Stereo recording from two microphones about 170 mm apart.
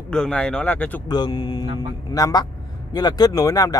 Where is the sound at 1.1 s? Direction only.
25° left (ahead or behind).